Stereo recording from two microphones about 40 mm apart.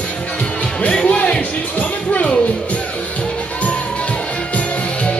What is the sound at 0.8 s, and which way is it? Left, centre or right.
Music, left.